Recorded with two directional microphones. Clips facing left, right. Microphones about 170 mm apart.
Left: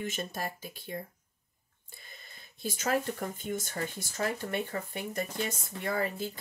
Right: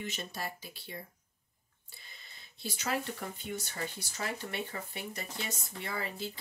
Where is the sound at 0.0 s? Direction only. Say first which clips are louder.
Left 4 dB; 50° left (ahead or behind).